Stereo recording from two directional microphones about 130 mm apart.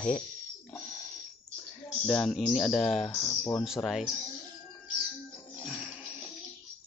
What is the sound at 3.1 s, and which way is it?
Speech, 25° left (ahead or behind).